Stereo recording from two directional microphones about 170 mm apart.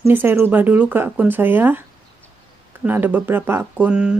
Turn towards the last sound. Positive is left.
turn(degrees=-5)  # may be behind; listen again after turning